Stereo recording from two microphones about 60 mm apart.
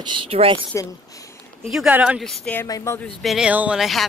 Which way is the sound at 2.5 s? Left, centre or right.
Centre.